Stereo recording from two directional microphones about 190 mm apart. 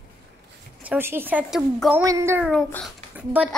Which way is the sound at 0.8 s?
10° right (ahead or behind).